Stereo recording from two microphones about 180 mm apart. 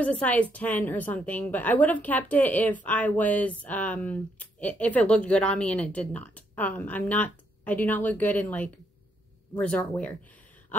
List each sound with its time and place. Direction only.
0.0 s a woman's voice: 10° left (ahead or behind)